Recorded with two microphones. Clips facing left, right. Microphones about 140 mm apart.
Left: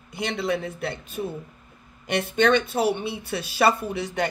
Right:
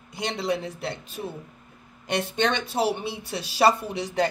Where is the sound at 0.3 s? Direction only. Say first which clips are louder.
Left 1 dB; 30° right (ahead or behind).